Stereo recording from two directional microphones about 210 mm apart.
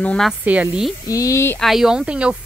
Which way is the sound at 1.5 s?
Centre (ahead or behind).